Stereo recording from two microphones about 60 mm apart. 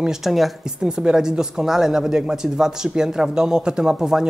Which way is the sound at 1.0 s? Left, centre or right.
Centre.